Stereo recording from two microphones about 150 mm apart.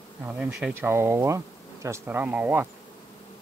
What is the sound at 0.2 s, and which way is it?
Speech, 5° right (ahead or behind).